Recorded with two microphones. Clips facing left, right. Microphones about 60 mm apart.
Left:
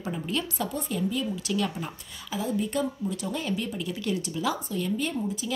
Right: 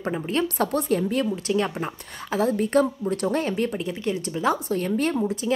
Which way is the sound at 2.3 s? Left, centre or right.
Right.